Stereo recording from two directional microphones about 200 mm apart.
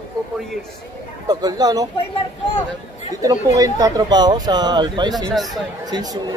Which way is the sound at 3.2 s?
15° right (ahead or behind).